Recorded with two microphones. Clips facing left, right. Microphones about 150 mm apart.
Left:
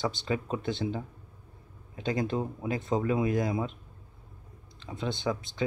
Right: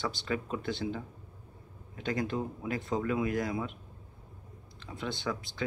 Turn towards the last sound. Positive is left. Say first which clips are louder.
# left 4 dB
turn(degrees=20)  # may be behind; listen again after turning